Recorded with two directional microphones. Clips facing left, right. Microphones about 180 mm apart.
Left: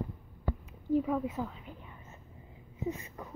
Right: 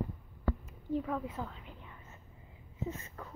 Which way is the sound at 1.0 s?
10° left (ahead or behind).